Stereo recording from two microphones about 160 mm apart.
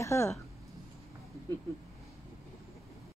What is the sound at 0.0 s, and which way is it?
Speech, 20° left (ahead or behind).